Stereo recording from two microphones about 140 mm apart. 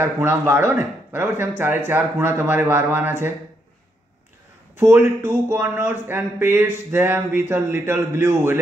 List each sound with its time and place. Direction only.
0.0 s speech: 15° right (ahead or behind)
4.7 s speech: 15° right (ahead or behind)